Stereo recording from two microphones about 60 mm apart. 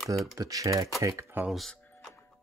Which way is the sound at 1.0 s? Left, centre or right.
Right.